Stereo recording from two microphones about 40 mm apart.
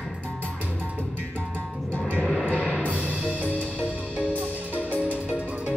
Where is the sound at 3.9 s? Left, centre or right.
Right.